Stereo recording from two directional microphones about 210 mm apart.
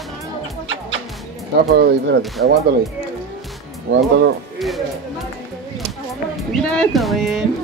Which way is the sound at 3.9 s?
60° right (ahead or behind).